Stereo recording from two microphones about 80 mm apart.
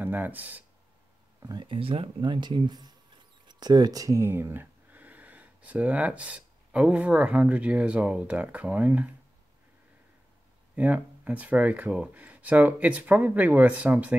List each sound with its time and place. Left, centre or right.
0.0 s speech: right
1.4 s speech: right
4.2 s speech: right
10.8 s speech: centre